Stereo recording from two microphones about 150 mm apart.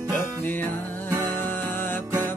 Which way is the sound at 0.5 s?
10° left (ahead or behind).